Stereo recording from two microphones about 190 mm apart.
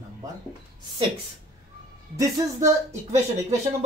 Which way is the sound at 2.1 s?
20° right (ahead or behind).